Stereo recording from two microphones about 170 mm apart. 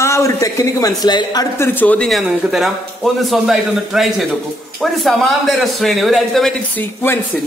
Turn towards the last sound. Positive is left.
turn(degrees=5)  # may be behind; listen again after turning